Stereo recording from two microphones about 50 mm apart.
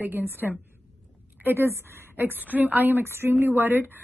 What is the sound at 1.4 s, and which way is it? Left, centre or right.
Speech, right.